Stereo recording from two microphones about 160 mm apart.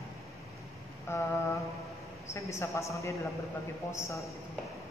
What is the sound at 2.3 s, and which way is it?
A man's voice, 20° left (ahead or behind).